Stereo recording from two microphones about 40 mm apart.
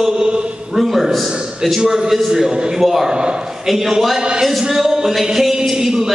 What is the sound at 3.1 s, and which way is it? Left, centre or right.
Speech, centre.